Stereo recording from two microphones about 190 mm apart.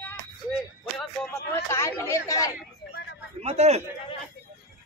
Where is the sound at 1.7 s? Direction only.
15° left (ahead or behind).